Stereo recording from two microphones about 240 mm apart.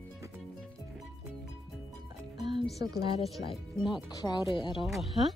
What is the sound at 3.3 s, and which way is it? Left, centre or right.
Speech, centre.